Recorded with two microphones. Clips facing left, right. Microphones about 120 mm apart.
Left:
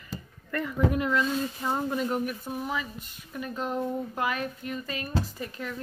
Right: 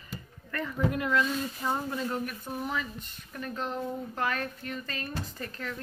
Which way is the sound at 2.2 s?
5° left (ahead or behind).